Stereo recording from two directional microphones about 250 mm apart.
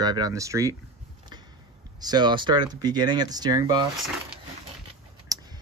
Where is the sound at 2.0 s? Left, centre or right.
Centre.